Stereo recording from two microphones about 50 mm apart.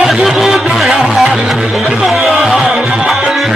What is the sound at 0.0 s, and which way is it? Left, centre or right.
Music, centre.